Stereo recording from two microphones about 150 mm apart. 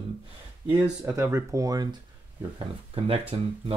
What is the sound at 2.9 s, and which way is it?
Speech, 40° right (ahead or behind).